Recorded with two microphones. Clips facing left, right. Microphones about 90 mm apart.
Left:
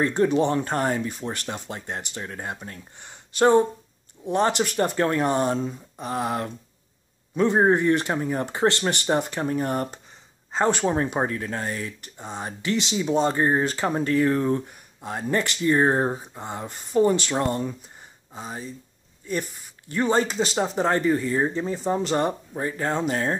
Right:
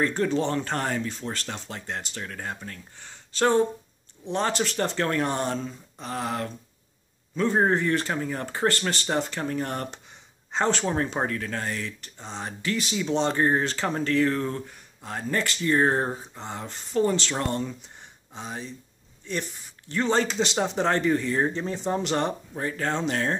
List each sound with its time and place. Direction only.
0.0 s speech: 20° left (ahead or behind)
9.7 s speech: 5° left (ahead or behind)
19.9 s speech: 10° left (ahead or behind)